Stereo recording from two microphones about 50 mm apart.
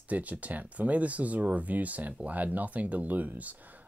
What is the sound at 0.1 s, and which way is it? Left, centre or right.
Speech, right.